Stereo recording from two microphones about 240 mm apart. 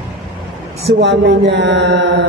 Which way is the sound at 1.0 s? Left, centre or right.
Right.